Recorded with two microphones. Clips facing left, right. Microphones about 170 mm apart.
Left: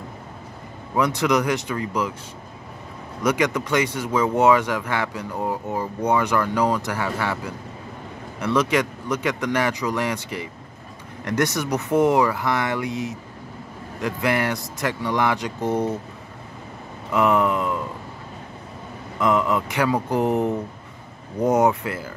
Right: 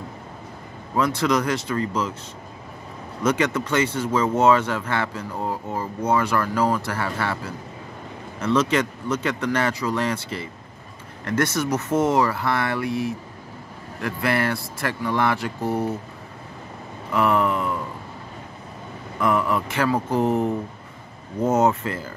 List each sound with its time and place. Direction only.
0.9 s speech: 15° left (ahead or behind)
3.2 s speech: 10° left (ahead or behind)
17.1 s speech: 15° left (ahead or behind)
19.1 s speech: 20° left (ahead or behind)